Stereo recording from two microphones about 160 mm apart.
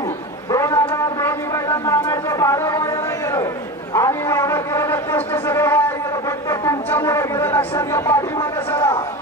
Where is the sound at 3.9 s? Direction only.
15° left (ahead or behind).